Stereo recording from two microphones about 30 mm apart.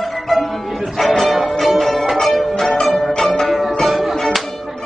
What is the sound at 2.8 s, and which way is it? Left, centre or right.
Music, centre.